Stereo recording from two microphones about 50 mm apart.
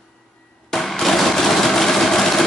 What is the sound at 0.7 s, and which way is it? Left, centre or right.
Engine, centre.